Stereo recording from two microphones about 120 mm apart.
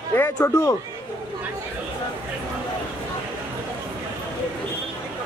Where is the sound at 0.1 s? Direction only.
15° left (ahead or behind).